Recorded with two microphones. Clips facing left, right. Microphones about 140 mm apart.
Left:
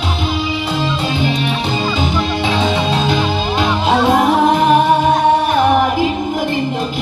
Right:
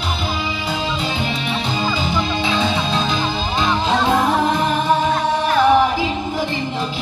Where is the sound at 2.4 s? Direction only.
65° left (ahead or behind).